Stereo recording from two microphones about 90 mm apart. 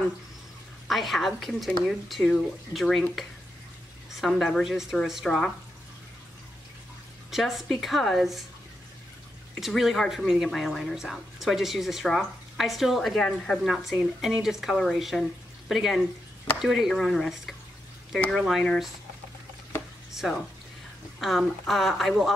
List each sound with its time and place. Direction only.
0.8 s a woman's voice: centre (ahead or behind)
4.2 s a woman's voice: 5° left (ahead or behind)
7.2 s a woman's voice: centre (ahead or behind)
9.6 s a woman's voice: centre (ahead or behind)
20.2 s a woman's voice: centre (ahead or behind)